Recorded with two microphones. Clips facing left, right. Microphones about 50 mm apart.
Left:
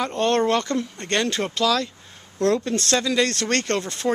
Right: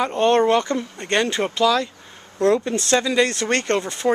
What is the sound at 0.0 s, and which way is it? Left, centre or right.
Speech, centre.